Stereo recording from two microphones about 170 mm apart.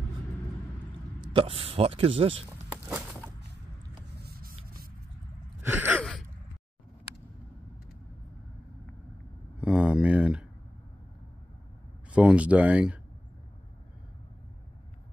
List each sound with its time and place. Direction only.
1.2 s speech: 30° right (ahead or behind)
4.2 s spray: 65° right (ahead or behind)
5.6 s gasp: 10° right (ahead or behind)
9.6 s a sound: 5° right (ahead or behind)
12.1 s speech: 5° right (ahead or behind)